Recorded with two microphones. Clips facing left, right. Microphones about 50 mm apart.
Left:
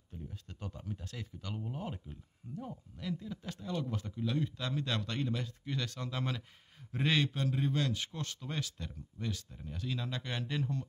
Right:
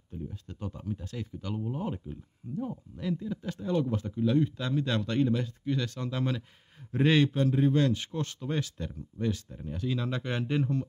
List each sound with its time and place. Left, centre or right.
0.5 s a man's voice: centre
3.5 s a man's voice: right; by 6.4 s centre
6.9 s a man's voice: centre